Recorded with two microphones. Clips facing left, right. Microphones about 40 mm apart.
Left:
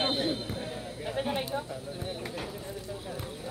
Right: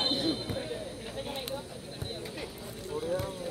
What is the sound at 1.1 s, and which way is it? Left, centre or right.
Bird, left.